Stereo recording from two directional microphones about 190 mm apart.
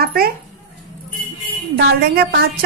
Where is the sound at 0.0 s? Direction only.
55° right (ahead or behind).